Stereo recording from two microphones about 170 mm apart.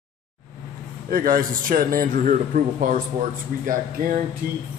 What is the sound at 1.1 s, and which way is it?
Speech, 55° right (ahead or behind).